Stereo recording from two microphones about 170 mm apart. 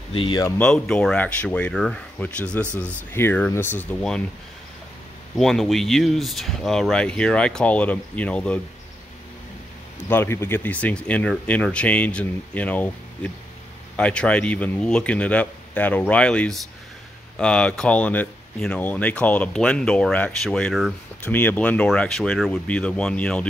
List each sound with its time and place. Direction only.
0.1 s speech: 30° left (ahead or behind)
0.6 s speech: 5° left (ahead or behind)
5.3 s speech: centre (ahead or behind)
10.0 s speech: 15° left (ahead or behind)